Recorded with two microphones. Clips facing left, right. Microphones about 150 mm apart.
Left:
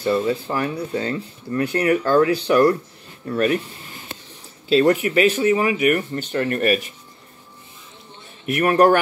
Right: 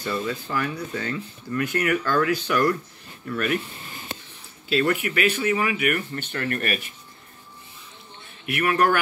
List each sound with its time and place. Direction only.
0.0 s speech: 30° left (ahead or behind)
4.6 s speech: 35° left (ahead or behind)
8.5 s speech: 40° left (ahead or behind)